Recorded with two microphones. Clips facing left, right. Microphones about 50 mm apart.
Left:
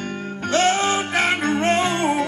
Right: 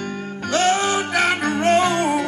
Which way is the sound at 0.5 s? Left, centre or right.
Left.